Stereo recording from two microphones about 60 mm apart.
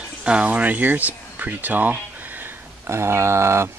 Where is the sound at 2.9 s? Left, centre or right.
Right.